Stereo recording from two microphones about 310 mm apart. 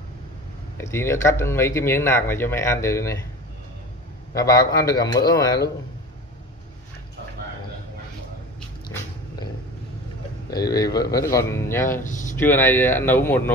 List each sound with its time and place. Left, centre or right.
0.7 s speech: centre
4.3 s speech: centre
10.5 s speech: centre
12.0 s speech: left
12.4 s speech: centre